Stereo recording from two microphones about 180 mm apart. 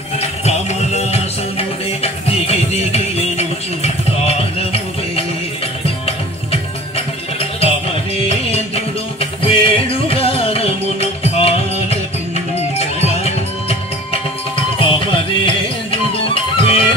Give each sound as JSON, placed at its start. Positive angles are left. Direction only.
{"t": 0.2, "sound": "music", "side_deg": 40}
{"t": 8.3, "sound": "music", "side_deg": 35}